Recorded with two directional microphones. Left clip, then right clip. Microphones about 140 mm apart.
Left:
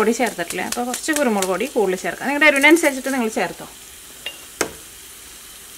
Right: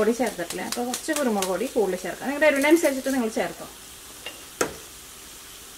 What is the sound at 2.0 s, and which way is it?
Speech, 40° left (ahead or behind).